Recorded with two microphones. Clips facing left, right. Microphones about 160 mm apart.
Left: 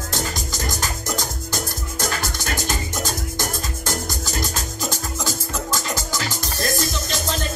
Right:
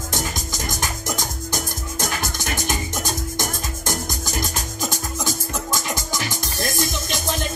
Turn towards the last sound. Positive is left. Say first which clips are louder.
# even
turn(degrees=-15)  # may be behind; listen again after turning